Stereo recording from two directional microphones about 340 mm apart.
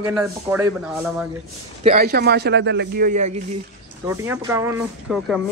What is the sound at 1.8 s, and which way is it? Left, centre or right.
A man's voice, right.